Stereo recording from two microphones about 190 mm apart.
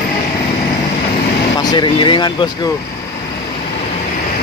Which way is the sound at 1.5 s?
25° left (ahead or behind).